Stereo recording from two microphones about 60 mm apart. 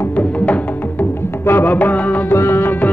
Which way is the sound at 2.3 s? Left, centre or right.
Left.